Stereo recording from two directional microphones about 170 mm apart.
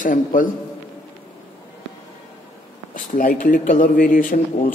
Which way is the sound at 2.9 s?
55° left (ahead or behind).